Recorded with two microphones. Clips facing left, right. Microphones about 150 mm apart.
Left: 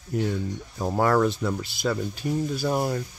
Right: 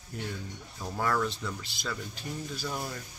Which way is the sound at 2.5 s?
50° left (ahead or behind).